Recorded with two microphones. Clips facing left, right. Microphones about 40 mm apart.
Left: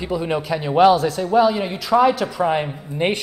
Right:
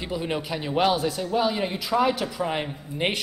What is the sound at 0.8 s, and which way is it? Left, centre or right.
A man's voice, centre.